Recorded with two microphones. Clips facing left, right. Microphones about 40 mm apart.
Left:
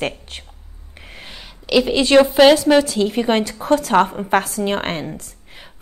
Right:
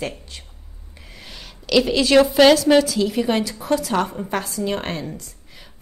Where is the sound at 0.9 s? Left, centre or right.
Left.